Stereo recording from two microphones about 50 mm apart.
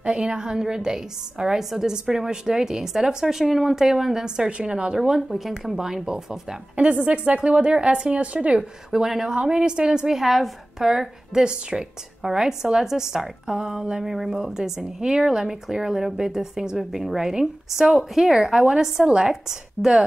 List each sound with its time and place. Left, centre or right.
0.0 s a woman's voice: centre
5.3 s a woman's voice: centre
6.8 s speech: right
8.9 s a woman's voice: centre